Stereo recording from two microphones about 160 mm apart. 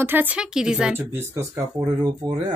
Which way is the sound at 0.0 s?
10° right (ahead or behind).